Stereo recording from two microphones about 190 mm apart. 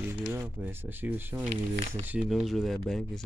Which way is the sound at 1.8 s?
45° right (ahead or behind).